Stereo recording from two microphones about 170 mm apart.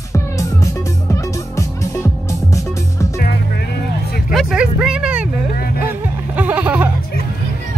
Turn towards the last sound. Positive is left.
turn(degrees=-10)  # may be behind; listen again after turning